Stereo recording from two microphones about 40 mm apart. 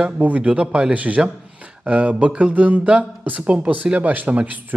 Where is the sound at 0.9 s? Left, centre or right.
Right.